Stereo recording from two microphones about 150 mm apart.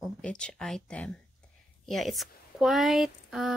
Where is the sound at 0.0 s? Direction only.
5° left (ahead or behind).